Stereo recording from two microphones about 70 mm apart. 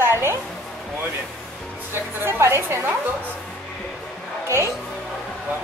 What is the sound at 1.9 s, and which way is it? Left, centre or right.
A woman's voice, right.